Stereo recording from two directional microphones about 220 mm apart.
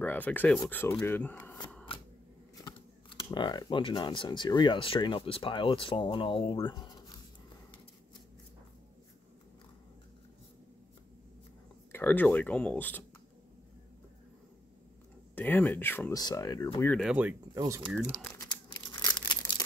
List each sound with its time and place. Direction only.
0.0 s speech: 10° left (ahead or behind)
2.6 s speech: 20° left (ahead or behind)
11.9 s speech: 10° left (ahead or behind)
15.3 s speech: 10° left (ahead or behind)
17.0 s speech: 5° right (ahead or behind)
18.9 s crumpling: 20° left (ahead or behind)